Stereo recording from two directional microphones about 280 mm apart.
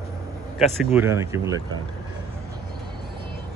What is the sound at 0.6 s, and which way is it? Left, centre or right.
Speech, centre.